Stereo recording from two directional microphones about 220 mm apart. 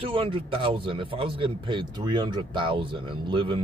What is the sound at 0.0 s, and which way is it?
Speech, 25° right (ahead or behind).